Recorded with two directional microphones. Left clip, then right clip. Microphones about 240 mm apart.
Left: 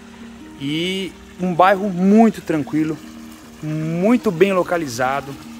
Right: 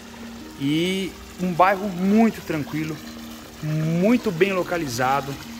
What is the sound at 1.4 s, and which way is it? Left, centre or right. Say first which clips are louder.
Speech: left 4 dB; left.